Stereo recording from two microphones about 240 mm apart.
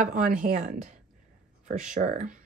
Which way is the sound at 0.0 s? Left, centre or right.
Right.